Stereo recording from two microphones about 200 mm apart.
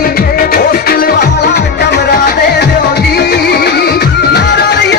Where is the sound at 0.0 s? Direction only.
45° left (ahead or behind).